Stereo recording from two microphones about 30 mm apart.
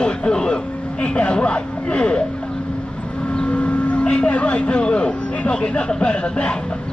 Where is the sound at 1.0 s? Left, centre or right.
Left.